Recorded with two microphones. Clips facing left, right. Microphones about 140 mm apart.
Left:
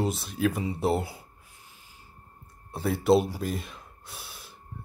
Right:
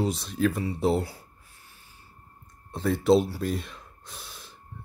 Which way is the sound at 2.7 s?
5° left (ahead or behind).